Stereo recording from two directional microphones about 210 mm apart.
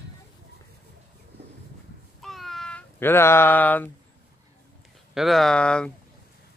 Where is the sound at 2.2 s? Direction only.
Centre (ahead or behind).